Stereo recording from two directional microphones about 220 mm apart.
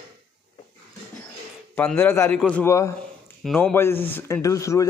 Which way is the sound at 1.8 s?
5° left (ahead or behind).